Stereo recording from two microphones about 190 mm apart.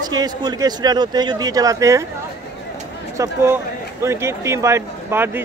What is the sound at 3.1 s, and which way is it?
A man's voice, 15° right (ahead or behind).